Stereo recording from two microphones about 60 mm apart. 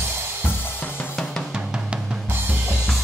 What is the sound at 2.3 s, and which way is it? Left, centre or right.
Drum kit, right.